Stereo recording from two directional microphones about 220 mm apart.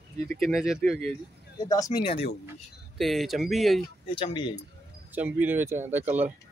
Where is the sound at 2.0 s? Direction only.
25° left (ahead or behind).